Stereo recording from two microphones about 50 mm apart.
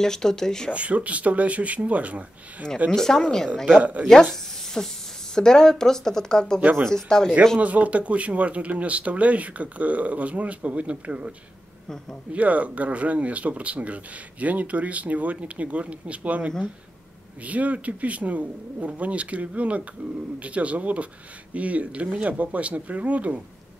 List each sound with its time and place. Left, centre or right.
0.0 s speech: centre
0.7 s speech: right
2.9 s speech: centre
3.8 s speech: right
4.1 s speech: centre
7.5 s speech: right